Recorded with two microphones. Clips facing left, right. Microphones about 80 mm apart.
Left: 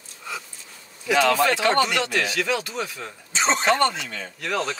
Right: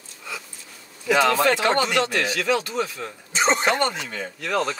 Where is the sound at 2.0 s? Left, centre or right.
Centre.